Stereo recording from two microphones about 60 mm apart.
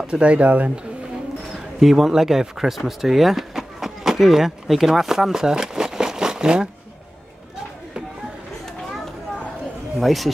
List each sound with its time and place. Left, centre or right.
0.0 s speech: centre
1.8 s speech: centre
9.9 s speech: centre